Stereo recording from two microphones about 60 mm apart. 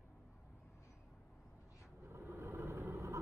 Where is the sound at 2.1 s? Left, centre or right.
Right.